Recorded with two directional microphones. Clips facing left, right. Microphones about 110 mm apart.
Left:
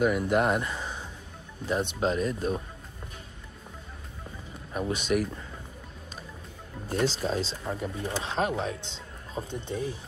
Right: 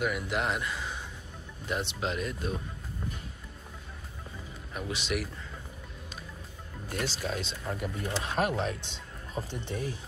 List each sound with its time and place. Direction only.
0.0 s speech: 40° left (ahead or behind)
4.7 s speech: 40° left (ahead or behind)
6.9 s speech: 30° left (ahead or behind)